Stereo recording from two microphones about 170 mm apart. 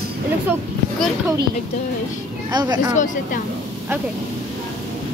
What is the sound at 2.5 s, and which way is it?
Speech, 25° right (ahead or behind).